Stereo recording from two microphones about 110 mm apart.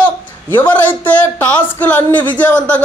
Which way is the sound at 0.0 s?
15° left (ahead or behind).